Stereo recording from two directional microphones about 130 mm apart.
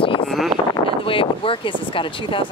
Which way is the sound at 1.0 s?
45° left (ahead or behind).